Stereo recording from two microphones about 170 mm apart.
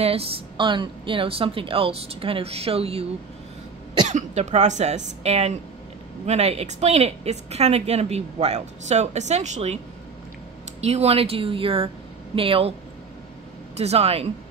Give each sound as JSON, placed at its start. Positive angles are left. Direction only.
{"t": 0.0, "sound": "a woman's voice", "side_deg": -35}
{"t": 4.1, "sound": "a woman's voice", "side_deg": -45}
{"t": 10.8, "sound": "a woman's voice", "side_deg": -40}
{"t": 13.7, "sound": "a woman's voice", "side_deg": -35}